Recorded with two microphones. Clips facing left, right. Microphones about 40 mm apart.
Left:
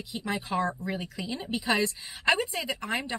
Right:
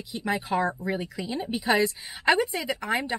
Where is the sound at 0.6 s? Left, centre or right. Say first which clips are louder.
Right 2 dB; right.